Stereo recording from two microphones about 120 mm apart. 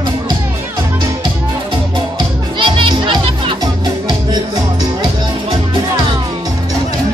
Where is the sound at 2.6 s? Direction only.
45° right (ahead or behind).